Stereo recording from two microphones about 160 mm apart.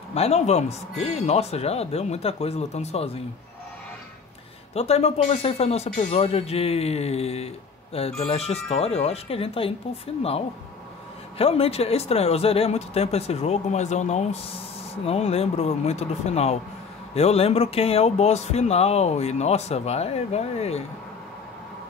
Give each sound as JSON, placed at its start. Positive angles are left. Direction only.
{"t": 0.1, "sound": "speech", "side_deg": 40}
{"t": 4.7, "sound": "speech", "side_deg": 40}
{"t": 11.3, "sound": "speech", "side_deg": 35}